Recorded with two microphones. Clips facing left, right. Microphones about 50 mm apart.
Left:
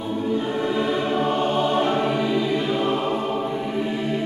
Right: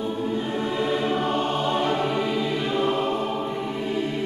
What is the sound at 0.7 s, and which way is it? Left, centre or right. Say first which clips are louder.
Music: even; centre.